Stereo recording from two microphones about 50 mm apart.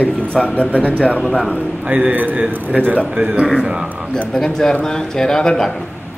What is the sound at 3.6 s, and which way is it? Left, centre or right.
Speech, centre.